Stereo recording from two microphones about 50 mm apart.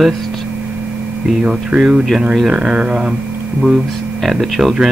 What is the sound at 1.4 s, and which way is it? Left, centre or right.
Speech, centre.